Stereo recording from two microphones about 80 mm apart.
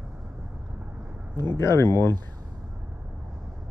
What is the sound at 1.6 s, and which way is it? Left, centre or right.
Speech, left.